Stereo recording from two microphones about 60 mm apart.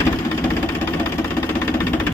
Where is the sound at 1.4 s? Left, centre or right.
Left.